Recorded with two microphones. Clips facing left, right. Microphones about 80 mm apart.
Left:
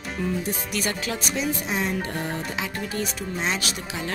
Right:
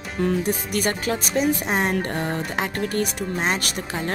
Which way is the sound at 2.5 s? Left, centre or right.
Right.